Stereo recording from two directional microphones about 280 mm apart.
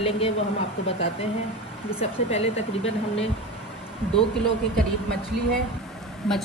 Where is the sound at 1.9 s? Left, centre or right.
Left.